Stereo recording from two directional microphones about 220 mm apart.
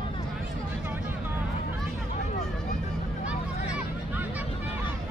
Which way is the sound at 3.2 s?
5° right (ahead or behind).